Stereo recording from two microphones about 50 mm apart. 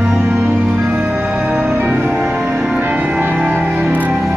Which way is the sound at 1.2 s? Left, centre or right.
Right.